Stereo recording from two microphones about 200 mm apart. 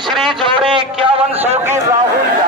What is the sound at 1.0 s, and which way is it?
Speech, 30° right (ahead or behind).